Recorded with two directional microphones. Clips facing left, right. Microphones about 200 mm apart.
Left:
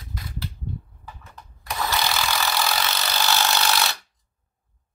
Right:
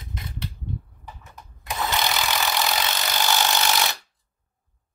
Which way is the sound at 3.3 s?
15° right (ahead or behind).